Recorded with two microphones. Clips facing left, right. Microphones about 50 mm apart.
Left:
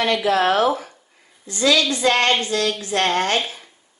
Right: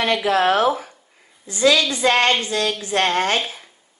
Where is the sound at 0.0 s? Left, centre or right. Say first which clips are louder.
Even; right.